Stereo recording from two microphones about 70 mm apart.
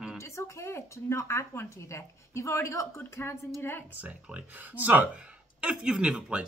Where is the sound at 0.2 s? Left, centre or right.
Left.